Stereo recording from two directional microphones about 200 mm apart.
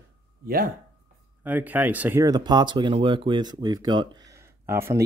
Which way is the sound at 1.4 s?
10° right (ahead or behind).